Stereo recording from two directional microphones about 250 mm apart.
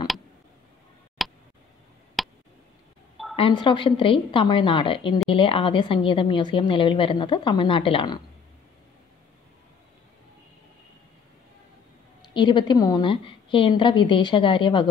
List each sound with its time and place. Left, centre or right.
1.2 s tick: centre
2.2 s a sound: centre
3.3 s a woman's voice: centre
12.4 s a woman's voice: centre